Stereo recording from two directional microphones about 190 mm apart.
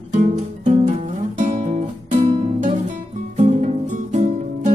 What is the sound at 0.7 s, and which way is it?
Music, 40° right (ahead or behind).